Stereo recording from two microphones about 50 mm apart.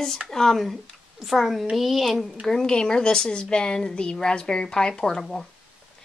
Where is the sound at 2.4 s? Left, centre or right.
Centre.